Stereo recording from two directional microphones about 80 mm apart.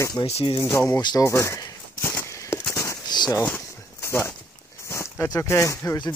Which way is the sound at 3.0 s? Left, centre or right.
Left.